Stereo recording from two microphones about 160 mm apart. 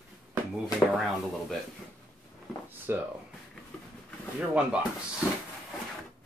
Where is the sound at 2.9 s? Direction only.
15° right (ahead or behind).